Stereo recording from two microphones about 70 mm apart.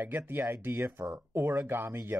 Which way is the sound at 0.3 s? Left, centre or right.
Right.